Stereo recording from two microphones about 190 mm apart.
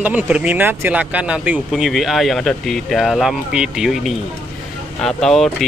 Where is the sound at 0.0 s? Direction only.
5° right (ahead or behind).